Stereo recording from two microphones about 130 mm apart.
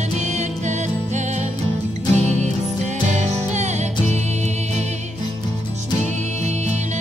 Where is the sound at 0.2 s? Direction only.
65° right (ahead or behind).